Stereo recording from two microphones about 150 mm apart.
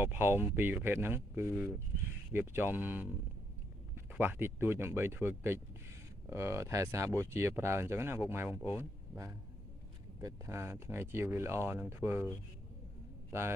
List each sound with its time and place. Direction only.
0.0 s speech: 15° right (ahead or behind)
13.3 s speech: 15° right (ahead or behind)